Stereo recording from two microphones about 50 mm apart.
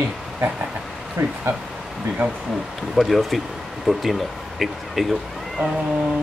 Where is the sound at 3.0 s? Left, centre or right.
Centre.